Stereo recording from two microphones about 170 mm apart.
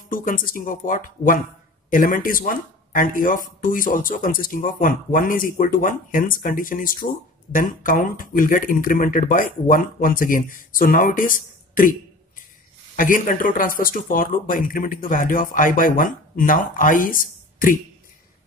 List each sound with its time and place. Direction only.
0.1 s speech: 50° left (ahead or behind)
12.9 s speech: 50° left (ahead or behind)